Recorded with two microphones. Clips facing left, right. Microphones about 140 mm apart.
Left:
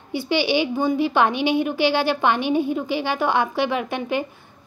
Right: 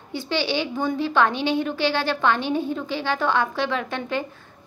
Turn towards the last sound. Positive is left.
turn(degrees=15)  # may be behind; listen again after turning